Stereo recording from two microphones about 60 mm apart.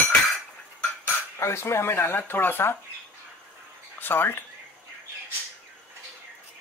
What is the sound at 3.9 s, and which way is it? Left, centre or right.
Speech, left.